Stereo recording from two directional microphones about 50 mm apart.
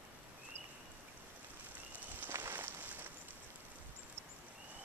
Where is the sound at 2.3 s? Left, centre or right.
Right.